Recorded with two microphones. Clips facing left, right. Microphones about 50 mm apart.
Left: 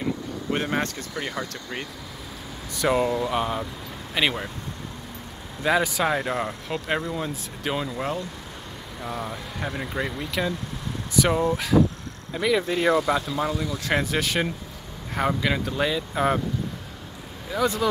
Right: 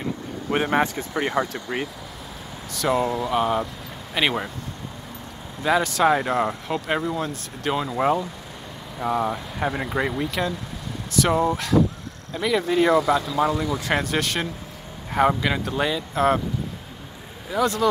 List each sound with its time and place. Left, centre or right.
0.5 s speech: centre
1.5 s speech: centre
3.1 s speech: centre
5.6 s speech: centre
6.0 s speech: centre
7.9 s speech: centre
11.2 s speech: centre
13.4 s speech: centre
17.5 s speech: centre